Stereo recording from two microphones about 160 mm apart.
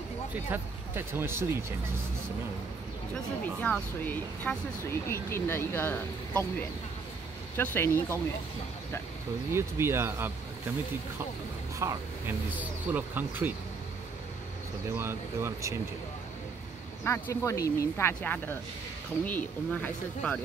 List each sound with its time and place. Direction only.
0.3 s speech: 15° right (ahead or behind)
3.6 s speech: 10° left (ahead or behind)
7.5 s speech: 15° left (ahead or behind)
9.5 s speech: 15° right (ahead or behind)
11.8 s speech: 15° right (ahead or behind)
15.0 s speech: 15° right (ahead or behind)
17.0 s speech: 15° left (ahead or behind)